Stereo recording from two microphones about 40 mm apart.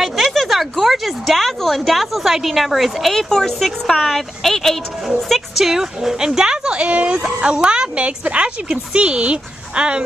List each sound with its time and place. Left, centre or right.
0.3 s a woman's voice: centre
3.2 s speech: centre
5.6 s a child's voice: centre; by 10.0 s right